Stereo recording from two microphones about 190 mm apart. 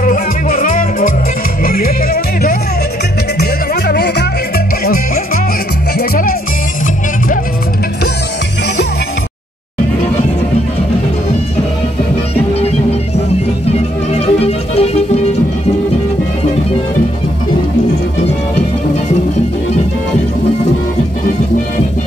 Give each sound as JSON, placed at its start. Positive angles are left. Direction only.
{"t": 0.0, "sound": "music", "side_deg": 45}
{"t": 13.7, "sound": "music", "side_deg": 30}